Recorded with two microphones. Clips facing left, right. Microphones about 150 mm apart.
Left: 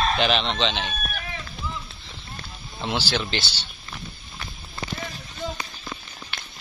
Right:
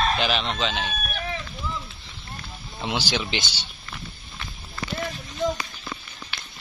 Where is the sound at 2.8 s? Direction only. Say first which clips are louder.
Left 1 dB; 10° right (ahead or behind).